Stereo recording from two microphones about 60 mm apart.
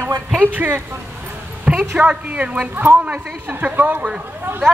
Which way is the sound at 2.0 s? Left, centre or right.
Right.